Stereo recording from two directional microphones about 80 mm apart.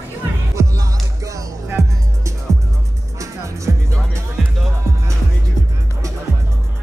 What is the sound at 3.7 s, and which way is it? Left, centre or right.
Music, right.